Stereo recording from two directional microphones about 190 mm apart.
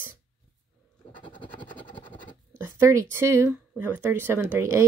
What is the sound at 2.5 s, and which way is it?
Speech, 10° right (ahead or behind).